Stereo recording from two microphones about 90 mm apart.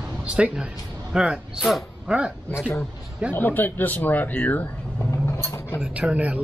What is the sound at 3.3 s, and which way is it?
Speech, 20° left (ahead or behind).